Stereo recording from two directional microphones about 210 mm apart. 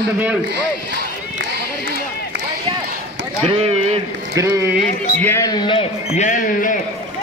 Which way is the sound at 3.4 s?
25° right (ahead or behind).